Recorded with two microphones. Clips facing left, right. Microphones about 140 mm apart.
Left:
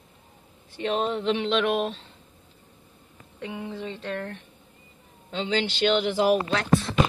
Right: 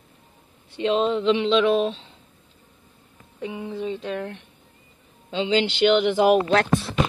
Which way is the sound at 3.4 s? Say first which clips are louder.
Right 4 dB; 10° right (ahead or behind).